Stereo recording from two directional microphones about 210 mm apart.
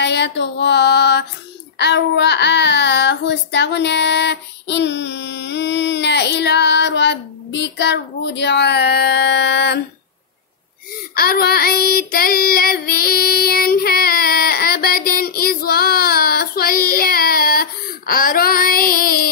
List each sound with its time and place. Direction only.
0.0 s a sound: 55° left (ahead or behind)
1.8 s child singing: 55° left (ahead or behind)
11.1 s child singing: 45° left (ahead or behind)